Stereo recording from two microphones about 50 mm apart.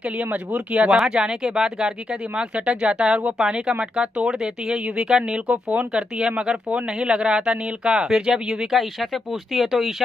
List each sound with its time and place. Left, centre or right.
0.2 s speech: right
0.9 s speech: centre